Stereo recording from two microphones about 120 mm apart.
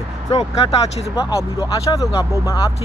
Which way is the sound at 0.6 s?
55° left (ahead or behind).